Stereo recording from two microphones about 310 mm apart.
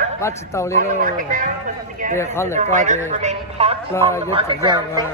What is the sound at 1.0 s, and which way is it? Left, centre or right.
Speech, right.